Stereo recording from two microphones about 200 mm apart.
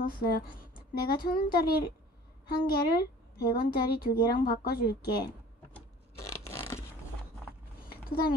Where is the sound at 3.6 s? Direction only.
50° left (ahead or behind).